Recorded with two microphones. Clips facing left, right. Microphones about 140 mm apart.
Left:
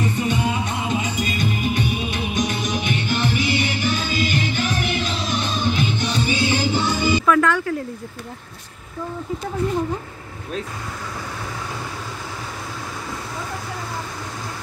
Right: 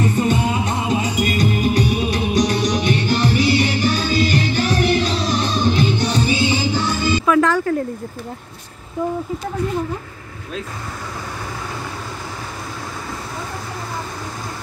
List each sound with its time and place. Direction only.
0.0 s music: 45° right (ahead or behind)
6.7 s music: 20° left (ahead or behind)
7.4 s a sound: 40° right (ahead or behind)